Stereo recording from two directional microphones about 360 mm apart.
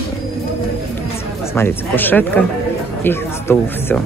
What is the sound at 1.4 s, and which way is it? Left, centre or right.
Speech, centre.